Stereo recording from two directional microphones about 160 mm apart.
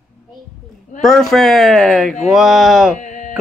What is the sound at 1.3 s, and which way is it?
Speech, centre (ahead or behind).